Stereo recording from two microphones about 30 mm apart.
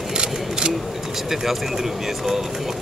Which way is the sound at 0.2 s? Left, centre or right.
Right.